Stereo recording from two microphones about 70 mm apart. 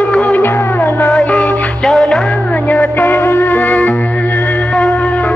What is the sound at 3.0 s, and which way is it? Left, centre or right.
Music, left.